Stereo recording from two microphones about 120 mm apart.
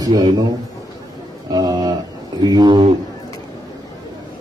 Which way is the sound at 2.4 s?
35° right (ahead or behind).